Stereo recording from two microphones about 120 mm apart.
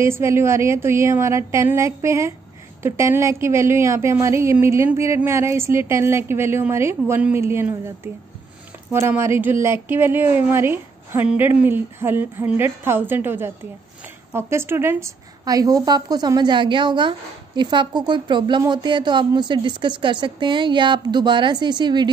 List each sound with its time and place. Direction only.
0.0 s a woman's voice: 20° right (ahead or behind); by 22.1 s 40° right (ahead or behind)